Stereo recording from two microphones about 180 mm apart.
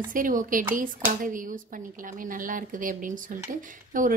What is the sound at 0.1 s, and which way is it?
Speech, 50° right (ahead or behind).